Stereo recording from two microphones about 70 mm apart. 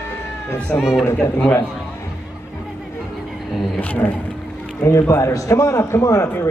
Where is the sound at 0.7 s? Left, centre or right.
Centre.